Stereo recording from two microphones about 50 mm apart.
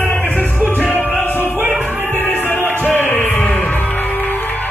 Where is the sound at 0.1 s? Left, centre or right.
Left.